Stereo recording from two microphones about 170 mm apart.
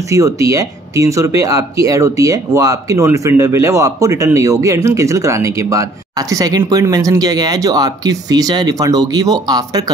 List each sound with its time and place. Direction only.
0.0 s speech: 20° right (ahead or behind)